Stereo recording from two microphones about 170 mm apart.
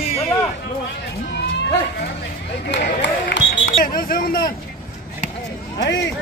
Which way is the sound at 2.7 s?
90° left.